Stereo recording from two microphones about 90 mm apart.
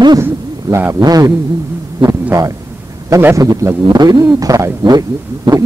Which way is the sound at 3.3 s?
35° right (ahead or behind).